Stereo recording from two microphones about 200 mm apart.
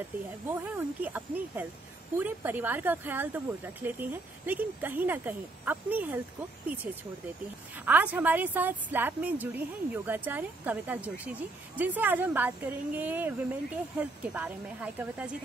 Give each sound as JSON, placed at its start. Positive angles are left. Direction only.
{"t": 0.5, "sound": "a woman's voice", "side_deg": -10}
{"t": 7.7, "sound": "a woman's voice", "side_deg": -10}